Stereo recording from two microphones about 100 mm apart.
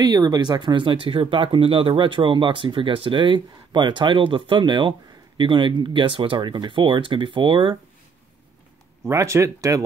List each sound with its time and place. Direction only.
0.0 s speech: 40° right (ahead or behind); by 7.7 s 55° right (ahead or behind)
9.0 s speech: 30° right (ahead or behind)